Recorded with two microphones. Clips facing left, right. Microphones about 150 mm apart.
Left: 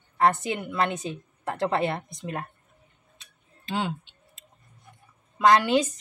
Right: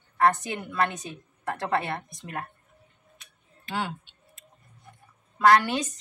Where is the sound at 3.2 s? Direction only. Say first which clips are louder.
Even; 25° left (ahead or behind).